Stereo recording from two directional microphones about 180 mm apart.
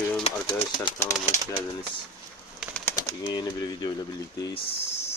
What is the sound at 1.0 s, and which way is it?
Speech, 15° left (ahead or behind).